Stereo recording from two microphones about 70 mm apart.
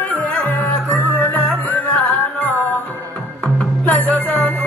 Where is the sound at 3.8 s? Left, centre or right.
Centre.